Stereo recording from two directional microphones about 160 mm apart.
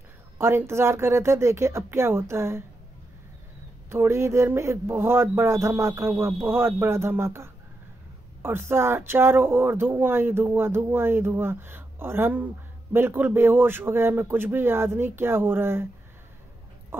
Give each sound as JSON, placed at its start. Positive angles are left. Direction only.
{"t": 0.4, "sound": "speech", "side_deg": -15}
{"t": 3.9, "sound": "speech", "side_deg": -15}